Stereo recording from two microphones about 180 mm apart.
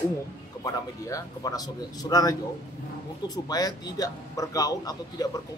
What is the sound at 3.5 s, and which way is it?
Speech, 20° left (ahead or behind).